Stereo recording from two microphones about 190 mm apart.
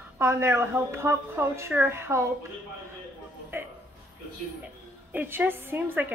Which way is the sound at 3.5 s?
10° right (ahead or behind).